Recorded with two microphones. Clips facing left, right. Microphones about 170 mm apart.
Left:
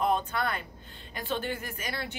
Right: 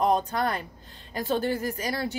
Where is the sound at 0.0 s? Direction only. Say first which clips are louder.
Right 4 dB; 40° right (ahead or behind).